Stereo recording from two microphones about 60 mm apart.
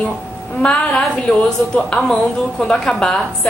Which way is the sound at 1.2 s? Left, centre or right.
Centre.